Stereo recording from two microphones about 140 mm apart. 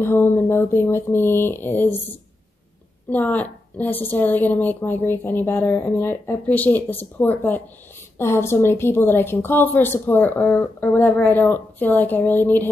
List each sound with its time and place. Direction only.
0.0 s a woman's voice: 15° left (ahead or behind)